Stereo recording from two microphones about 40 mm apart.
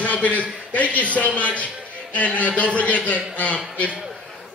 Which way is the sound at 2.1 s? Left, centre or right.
Left.